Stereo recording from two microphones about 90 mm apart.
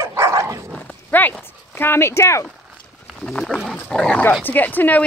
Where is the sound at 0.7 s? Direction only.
20° left (ahead or behind).